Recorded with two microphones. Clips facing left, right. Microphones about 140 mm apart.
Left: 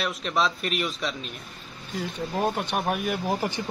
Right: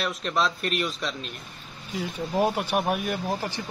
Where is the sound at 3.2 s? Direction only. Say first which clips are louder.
Left 2 dB; 15° left (ahead or behind).